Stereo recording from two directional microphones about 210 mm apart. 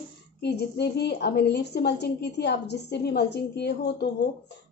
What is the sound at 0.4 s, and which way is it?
A woman's voice, 55° left (ahead or behind).